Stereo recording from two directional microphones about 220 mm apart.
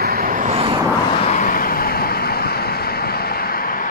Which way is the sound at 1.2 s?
35° left (ahead or behind).